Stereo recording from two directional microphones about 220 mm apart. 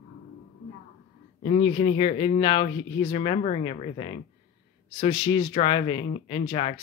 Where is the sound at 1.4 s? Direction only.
25° left (ahead or behind).